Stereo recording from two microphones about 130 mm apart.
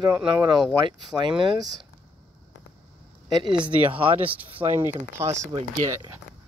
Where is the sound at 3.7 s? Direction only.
45° right (ahead or behind).